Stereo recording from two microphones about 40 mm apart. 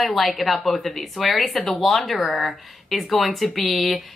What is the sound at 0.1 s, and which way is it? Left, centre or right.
A woman's voice, centre.